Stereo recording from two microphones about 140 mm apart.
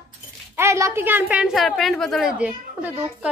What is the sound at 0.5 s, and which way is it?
A woman's voice, 20° right (ahead or behind).